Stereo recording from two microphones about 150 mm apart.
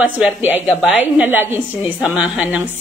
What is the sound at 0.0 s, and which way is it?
A woman's voice, 10° right (ahead or behind).